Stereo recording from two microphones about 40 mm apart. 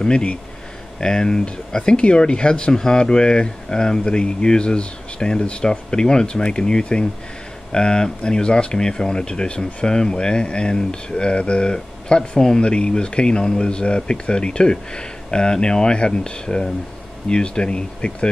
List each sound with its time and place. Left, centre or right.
0.0 s speech: left
1.8 s speech: left